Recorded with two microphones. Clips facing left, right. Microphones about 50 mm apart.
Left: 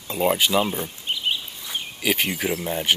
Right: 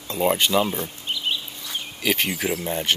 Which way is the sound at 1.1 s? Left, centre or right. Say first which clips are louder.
Left 1 dB; centre.